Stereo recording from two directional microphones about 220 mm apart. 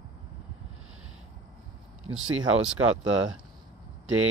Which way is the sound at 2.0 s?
65° right (ahead or behind).